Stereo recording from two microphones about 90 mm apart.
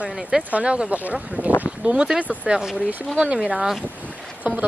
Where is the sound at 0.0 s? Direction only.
15° right (ahead or behind).